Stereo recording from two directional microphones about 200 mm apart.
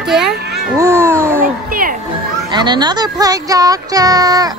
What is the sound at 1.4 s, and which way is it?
Cat, 45° right (ahead or behind).